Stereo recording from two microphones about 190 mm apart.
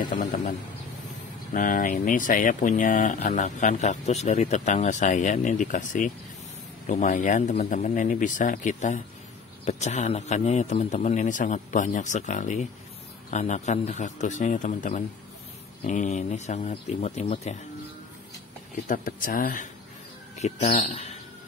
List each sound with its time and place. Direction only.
0.1 s speech: 40° left (ahead or behind)
1.5 s speech: 45° left (ahead or behind)
18.9 s speech: 45° left (ahead or behind)